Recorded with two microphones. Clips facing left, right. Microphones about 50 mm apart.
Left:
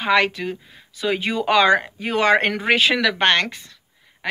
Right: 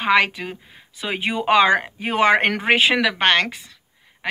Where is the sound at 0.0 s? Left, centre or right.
Right.